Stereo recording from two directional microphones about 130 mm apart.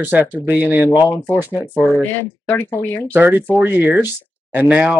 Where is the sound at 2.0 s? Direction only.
15° left (ahead or behind).